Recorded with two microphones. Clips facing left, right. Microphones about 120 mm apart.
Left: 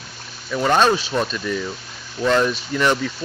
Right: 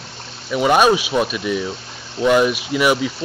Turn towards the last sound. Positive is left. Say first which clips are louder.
# right 3 dB
turn(degrees=-10)  # may be behind; listen again after turning